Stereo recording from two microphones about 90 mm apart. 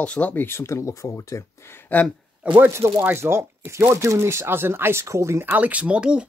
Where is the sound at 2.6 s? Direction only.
25° right (ahead or behind).